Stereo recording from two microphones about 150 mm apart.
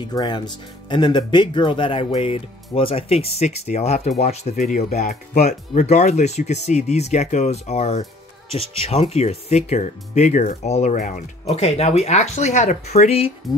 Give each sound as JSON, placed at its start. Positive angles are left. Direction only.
{"t": 0.1, "sound": "speech", "side_deg": 30}